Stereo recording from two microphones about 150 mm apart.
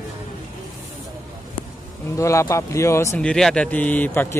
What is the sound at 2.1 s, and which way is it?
Speech, 20° left (ahead or behind).